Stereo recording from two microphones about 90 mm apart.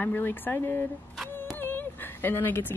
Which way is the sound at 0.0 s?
20° left (ahead or behind).